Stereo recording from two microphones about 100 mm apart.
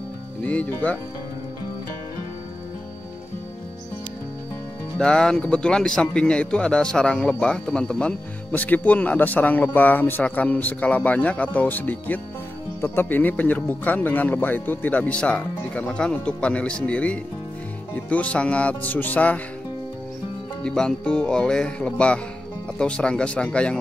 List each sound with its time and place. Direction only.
0.4 s a man's voice: 15° left (ahead or behind)
4.9 s a man's voice: 10° left (ahead or behind)
20.6 s a man's voice: 10° left (ahead or behind)